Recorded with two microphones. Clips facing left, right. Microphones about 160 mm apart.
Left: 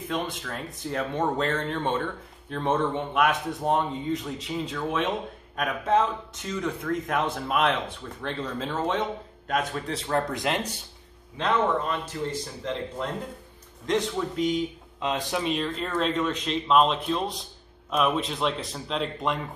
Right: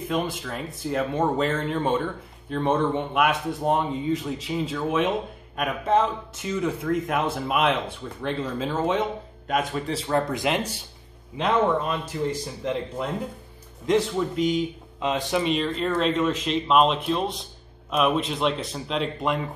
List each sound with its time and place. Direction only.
0.1 s speech: 5° right (ahead or behind)
11.3 s speech: 15° right (ahead or behind)